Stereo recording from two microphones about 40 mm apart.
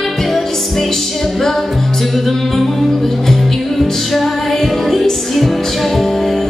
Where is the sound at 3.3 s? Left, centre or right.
Centre.